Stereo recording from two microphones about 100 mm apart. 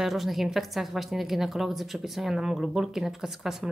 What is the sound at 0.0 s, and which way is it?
A woman's voice, centre (ahead or behind).